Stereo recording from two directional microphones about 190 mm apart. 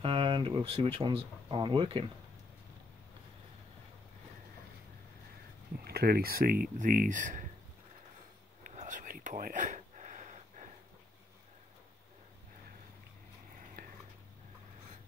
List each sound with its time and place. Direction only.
0.0 s speech: 25° right (ahead or behind)
5.9 s speech: 55° right (ahead or behind)
8.6 s whispering: 40° right (ahead or behind)